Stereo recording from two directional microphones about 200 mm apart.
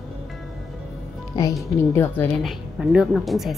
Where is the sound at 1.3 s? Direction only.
20° left (ahead or behind).